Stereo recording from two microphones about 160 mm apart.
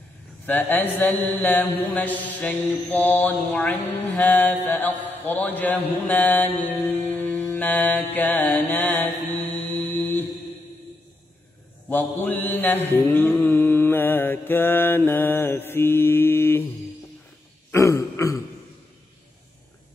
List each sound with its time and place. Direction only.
0.5 s mantra: 10° left (ahead or behind)
11.9 s mantra: 10° left (ahead or behind)
17.6 s throat clearing: 15° left (ahead or behind)